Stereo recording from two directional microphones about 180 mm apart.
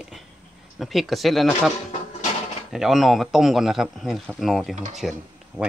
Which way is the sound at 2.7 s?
Centre (ahead or behind).